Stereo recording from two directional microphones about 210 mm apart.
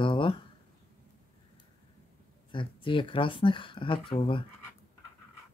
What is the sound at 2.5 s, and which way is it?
Speech, 25° left (ahead or behind).